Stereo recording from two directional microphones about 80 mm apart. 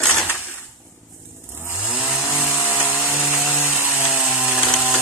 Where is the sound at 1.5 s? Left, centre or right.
Right.